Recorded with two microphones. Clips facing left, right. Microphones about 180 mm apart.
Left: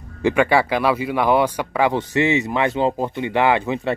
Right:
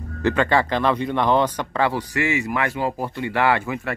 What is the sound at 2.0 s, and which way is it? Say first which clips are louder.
Speech: left 4 dB; 25° left (ahead or behind).